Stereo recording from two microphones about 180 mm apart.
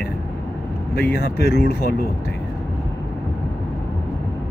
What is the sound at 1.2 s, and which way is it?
Speech, 60° left (ahead or behind).